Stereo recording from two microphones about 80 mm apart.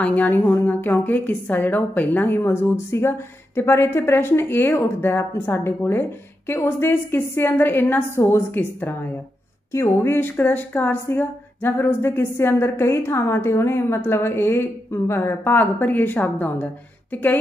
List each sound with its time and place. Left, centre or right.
0.0 s a woman's voice: left
9.7 s speech: left